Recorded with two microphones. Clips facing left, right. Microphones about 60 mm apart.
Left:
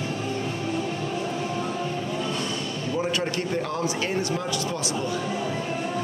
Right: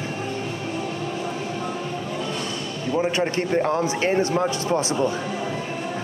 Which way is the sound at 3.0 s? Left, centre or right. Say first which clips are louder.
Right 5 dB; right.